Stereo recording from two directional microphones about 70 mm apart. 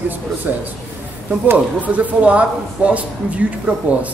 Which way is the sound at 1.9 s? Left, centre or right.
Centre.